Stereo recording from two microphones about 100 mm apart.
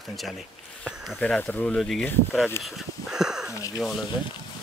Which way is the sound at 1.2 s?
15° left (ahead or behind).